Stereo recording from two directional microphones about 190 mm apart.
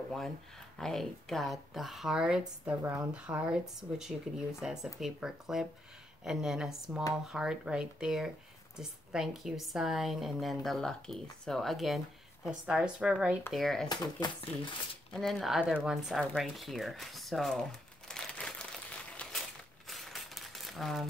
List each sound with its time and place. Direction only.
0.7 s speech: centre (ahead or behind)
13.8 s speech: 20° left (ahead or behind)
15.1 s speech: centre (ahead or behind)
19.9 s coin: centre (ahead or behind)